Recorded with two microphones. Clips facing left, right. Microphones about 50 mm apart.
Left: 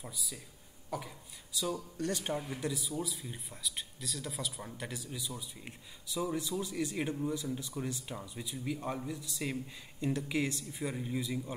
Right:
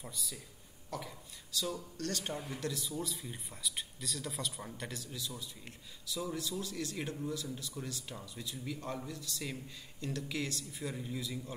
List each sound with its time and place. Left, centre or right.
0.0 s speech: centre; by 11.5 s left